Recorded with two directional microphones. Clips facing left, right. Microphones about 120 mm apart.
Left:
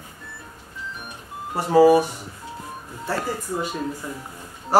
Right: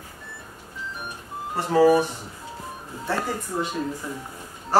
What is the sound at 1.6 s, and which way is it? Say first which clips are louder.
Speech: left 3 dB; 10° left (ahead or behind).